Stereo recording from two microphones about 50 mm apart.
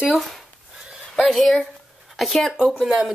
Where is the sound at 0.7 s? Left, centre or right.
Centre.